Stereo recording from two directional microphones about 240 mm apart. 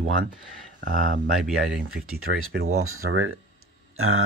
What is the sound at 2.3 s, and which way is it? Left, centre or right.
Speech, right.